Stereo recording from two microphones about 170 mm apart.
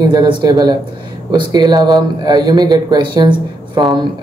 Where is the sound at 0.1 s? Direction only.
25° right (ahead or behind).